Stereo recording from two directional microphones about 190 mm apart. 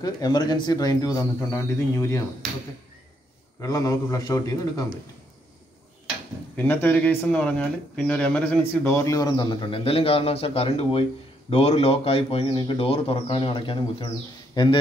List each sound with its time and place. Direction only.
0.0 s speech: 20° left (ahead or behind)
3.6 s speech: 20° left (ahead or behind)
6.5 s speech: 10° left (ahead or behind)